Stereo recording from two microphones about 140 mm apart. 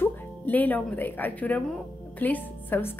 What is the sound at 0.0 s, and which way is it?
A woman's voice, 10° left (ahead or behind).